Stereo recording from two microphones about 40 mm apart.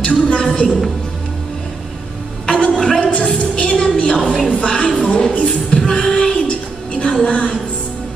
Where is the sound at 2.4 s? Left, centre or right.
Left.